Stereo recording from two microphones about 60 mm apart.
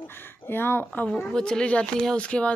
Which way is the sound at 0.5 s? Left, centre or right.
Left.